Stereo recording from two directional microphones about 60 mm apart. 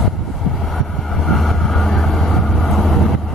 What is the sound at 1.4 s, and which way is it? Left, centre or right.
Vehicle, centre.